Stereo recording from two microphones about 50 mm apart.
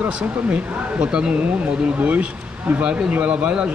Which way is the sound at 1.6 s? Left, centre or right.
Right.